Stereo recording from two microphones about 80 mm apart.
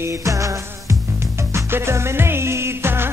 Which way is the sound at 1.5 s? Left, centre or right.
Right.